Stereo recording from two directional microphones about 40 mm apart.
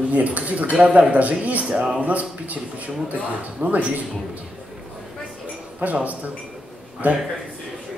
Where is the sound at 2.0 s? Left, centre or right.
Right.